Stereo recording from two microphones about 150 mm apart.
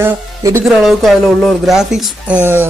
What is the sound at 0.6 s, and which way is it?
Speech, centre (ahead or behind).